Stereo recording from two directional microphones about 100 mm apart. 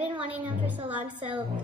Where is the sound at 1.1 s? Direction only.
50° right (ahead or behind).